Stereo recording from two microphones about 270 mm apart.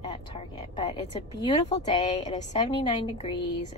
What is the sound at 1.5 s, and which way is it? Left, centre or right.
A woman's voice, left.